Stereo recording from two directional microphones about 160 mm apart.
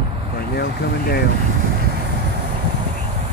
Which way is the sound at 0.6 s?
80° left.